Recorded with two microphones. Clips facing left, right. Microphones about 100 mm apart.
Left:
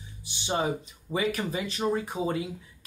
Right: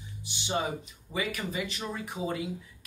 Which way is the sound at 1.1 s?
30° left (ahead or behind).